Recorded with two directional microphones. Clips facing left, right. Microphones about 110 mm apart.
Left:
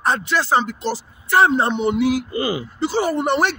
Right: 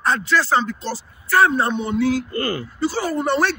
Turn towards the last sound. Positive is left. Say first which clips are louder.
# left 1 dB
turn(degrees=15)  # may be behind; listen again after turning